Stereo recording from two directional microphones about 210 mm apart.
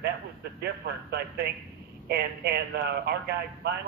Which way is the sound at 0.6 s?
50° right (ahead or behind).